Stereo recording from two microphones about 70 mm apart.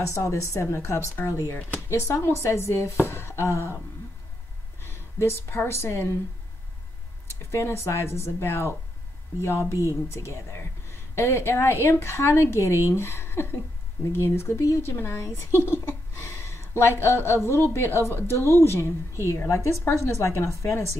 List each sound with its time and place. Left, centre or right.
0.0 s a woman's voice: left
3.1 s a sound: left
4.8 s speech: left
7.5 s a woman's voice: left
15.2 s a sound: left
17.0 s a woman's voice: left